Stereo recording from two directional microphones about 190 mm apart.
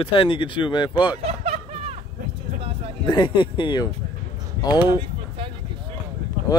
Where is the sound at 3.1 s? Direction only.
25° left (ahead or behind).